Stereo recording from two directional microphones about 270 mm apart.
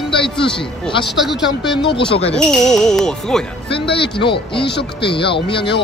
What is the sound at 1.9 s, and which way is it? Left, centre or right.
Speech, left.